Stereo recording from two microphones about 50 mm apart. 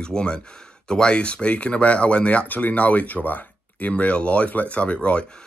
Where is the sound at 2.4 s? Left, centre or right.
Left.